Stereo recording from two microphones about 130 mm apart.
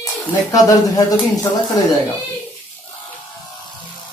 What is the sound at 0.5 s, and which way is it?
Speech, 25° left (ahead or behind).